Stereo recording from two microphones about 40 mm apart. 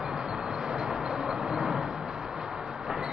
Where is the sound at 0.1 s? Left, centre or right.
Centre.